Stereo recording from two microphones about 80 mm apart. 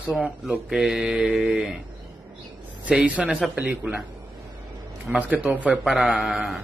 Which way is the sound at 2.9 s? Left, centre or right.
Centre.